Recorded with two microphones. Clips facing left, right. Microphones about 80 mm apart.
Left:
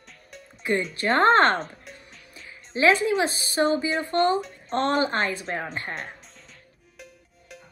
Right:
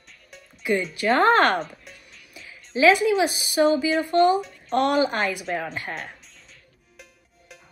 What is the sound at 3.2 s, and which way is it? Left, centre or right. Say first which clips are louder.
Speech: right 2 dB; centre.